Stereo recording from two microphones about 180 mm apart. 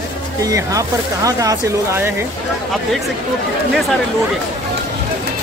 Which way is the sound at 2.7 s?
Centre (ahead or behind).